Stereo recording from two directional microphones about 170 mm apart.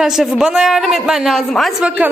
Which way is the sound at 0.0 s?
Centre (ahead or behind).